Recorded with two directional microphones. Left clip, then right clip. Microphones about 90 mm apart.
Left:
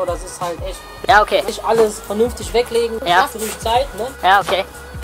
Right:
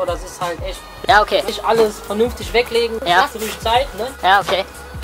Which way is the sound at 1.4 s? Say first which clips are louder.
Even; 5° left (ahead or behind).